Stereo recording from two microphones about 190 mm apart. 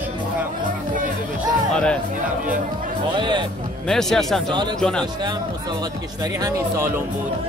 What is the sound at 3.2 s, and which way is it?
Speech, 25° right (ahead or behind).